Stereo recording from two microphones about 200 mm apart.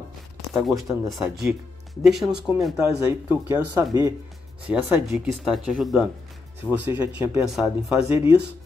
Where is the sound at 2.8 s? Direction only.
15° right (ahead or behind).